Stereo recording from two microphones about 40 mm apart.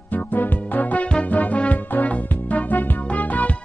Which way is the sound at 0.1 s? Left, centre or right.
Left.